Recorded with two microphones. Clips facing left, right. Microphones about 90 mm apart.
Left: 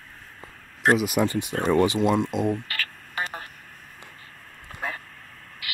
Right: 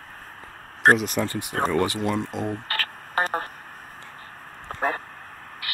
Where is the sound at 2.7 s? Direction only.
45° right (ahead or behind).